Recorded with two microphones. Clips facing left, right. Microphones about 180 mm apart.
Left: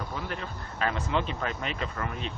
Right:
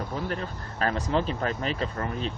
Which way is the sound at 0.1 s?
40° right (ahead or behind).